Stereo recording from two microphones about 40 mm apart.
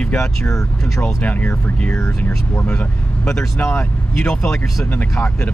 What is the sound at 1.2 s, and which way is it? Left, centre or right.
Speech, left.